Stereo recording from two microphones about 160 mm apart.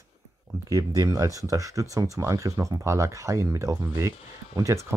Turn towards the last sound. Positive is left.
turn(degrees=-20)  # may be behind; listen again after turning